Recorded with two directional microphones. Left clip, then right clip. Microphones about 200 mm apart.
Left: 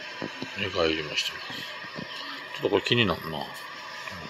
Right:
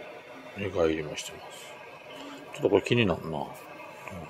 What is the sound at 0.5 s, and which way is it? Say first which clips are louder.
Speech: left 1 dB; 15° right (ahead or behind).